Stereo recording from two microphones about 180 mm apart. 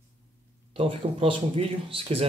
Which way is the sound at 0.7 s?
30° right (ahead or behind).